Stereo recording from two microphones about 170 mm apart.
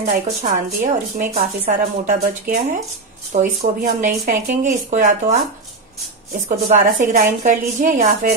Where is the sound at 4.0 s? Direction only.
50° right (ahead or behind).